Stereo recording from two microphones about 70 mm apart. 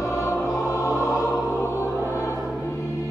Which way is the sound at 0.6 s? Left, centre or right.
Left.